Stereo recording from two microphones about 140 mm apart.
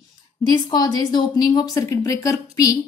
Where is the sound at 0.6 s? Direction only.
30° left (ahead or behind).